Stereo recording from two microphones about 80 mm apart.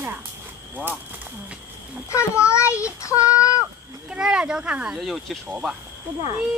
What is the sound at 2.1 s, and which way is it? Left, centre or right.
A child's voice, left.